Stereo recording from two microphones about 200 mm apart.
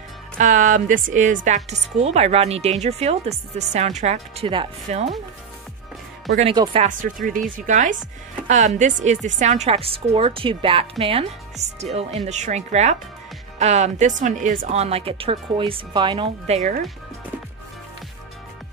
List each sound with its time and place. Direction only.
0.4 s speech: 40° right (ahead or behind)
6.5 s speech: 20° right (ahead or behind)
6.8 s speech: 40° right (ahead or behind)